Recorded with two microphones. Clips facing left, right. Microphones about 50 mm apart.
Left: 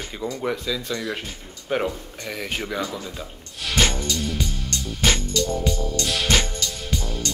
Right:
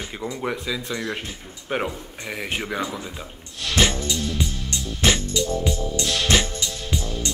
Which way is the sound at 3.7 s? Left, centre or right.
Centre.